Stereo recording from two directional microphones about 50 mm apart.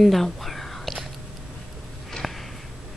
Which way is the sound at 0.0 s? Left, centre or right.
Centre.